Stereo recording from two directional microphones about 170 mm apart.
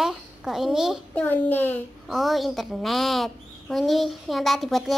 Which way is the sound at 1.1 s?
10° left (ahead or behind).